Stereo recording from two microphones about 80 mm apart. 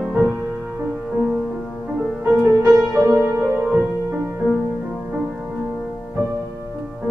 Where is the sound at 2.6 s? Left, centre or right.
Right.